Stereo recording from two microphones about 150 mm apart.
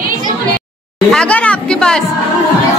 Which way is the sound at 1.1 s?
5° left (ahead or behind).